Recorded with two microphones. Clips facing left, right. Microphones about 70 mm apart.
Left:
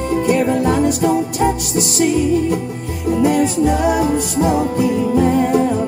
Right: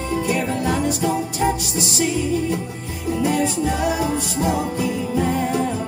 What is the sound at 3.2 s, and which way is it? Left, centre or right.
Music, centre.